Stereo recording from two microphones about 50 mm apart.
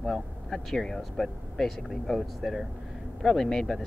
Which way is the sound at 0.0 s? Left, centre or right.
Centre.